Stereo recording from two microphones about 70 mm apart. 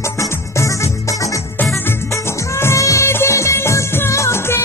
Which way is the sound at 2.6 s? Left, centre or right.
Left.